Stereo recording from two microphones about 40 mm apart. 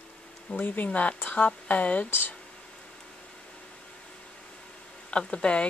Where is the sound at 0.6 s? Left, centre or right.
Left.